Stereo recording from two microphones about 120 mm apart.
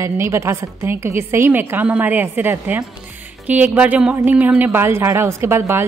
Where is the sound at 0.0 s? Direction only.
25° right (ahead or behind).